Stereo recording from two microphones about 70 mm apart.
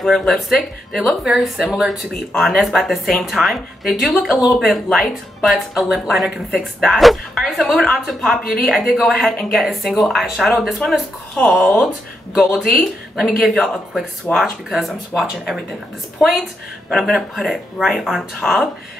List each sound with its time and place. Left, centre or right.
0.0 s speech: centre
11.3 s speech: centre
12.5 s speech: centre